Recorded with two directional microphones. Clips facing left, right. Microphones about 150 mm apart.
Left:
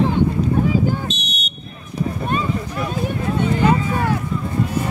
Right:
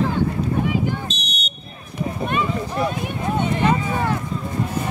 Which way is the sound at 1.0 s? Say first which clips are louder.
Left 3 dB; 35° right (ahead or behind).